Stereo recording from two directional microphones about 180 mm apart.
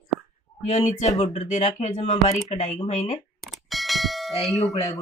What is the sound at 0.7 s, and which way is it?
Speech, 40° left (ahead or behind).